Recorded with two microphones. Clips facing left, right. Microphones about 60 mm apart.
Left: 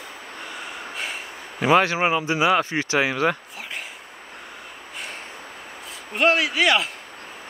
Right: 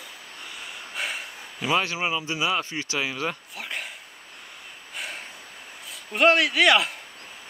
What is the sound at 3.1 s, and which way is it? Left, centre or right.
Speech, left.